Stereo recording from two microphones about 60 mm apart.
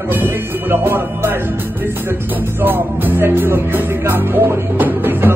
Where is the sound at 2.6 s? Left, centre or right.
Right.